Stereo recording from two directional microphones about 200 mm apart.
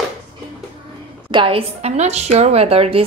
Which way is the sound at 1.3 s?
25° right (ahead or behind).